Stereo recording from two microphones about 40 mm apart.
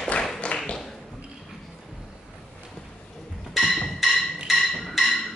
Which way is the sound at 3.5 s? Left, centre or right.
Centre.